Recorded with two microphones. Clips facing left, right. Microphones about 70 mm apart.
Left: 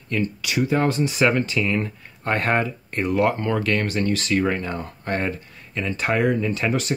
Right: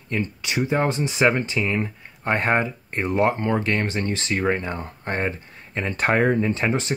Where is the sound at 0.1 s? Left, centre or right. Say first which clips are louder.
Left 2 dB; right.